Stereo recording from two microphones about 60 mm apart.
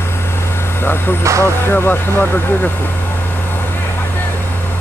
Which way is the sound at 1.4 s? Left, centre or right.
Left.